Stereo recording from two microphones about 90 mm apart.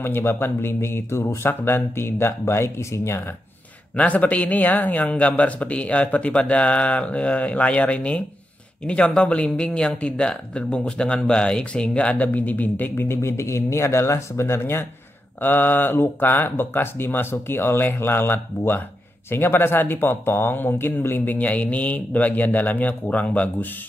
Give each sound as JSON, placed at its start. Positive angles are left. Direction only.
{"t": 0.0, "sound": "speech", "side_deg": 25}
{"t": 3.9, "sound": "speech", "side_deg": 15}